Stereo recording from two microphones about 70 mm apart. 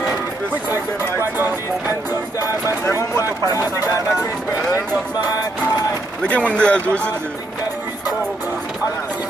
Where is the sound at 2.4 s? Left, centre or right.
Left.